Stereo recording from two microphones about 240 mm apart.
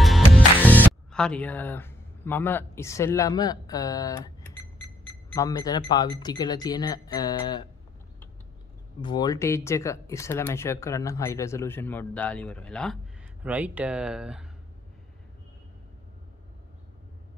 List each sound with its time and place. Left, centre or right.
0.0 s music: centre
1.1 s speech: centre
9.0 s speech: centre